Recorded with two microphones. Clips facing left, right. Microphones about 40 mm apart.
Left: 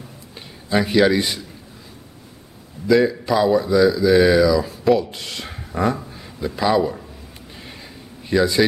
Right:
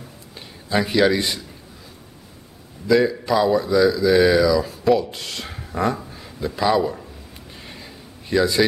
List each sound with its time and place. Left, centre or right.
0.3 s a man's voice: centre
2.9 s speech: centre
7.6 s a sound: centre